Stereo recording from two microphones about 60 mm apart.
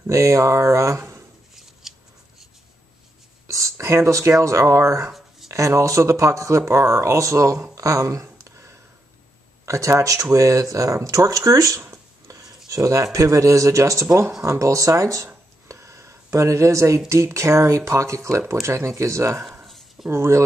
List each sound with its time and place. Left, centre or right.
0.1 s speech: right
1.5 s scissors: centre
3.4 s a sound: right
3.7 s speech: right
7.7 s a sound: right
9.7 s speech: right
11.0 s speech: right
11.2 s speech: right
15.7 s a sound: right
17.1 s speech: right
19.6 s a sound: centre
20.1 s speech: right